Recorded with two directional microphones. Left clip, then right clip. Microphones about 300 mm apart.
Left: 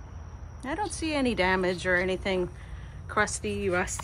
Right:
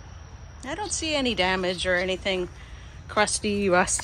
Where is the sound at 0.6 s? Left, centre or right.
Centre.